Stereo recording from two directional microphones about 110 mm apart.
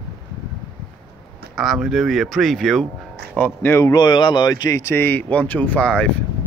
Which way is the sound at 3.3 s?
20° left (ahead or behind).